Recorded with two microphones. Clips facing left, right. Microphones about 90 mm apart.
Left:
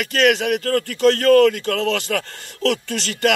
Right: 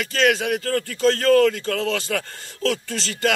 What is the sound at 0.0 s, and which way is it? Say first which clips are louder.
Speech: left 3 dB; 60° left (ahead or behind).